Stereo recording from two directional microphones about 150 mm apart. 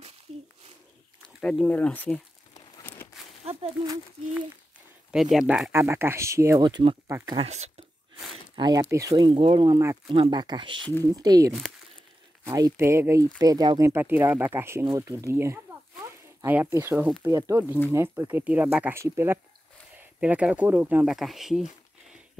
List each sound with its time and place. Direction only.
1.4 s speech: 5° left (ahead or behind)
2.8 s a sound: 15° left (ahead or behind)
3.4 s a sound: 40° right (ahead or behind)
5.1 s speech: 5° right (ahead or behind)
5.7 s speech: 15° right (ahead or behind)
6.6 s speech: 30° right (ahead or behind)
7.1 s speech: 20° right (ahead or behind)
7.3 s speech: 45° right (ahead or behind)
8.5 s speech: 30° right (ahead or behind)
9.3 s speech: 35° right (ahead or behind); by 21.6 s centre (ahead or behind)